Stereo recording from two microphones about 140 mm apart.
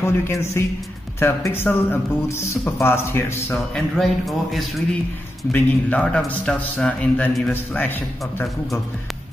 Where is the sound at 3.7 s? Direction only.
Centre (ahead or behind).